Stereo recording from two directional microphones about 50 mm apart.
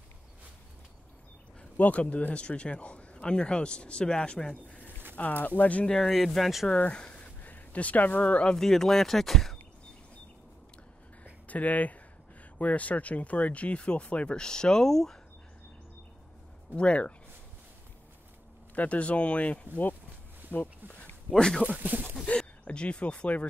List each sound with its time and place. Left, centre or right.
1.8 s speech: left
4.6 s a sound: left
5.1 s speech: left
5.9 s speech: centre
6.7 s speech: left
7.4 s speech: left
8.5 s speech: centre
11.4 s speech: left; by 15.1 s centre
16.7 s speech: left
18.8 s speech: left
20.4 s a sound: right
21.4 s speech: centre
21.6 s speech: right
22.7 s speech: left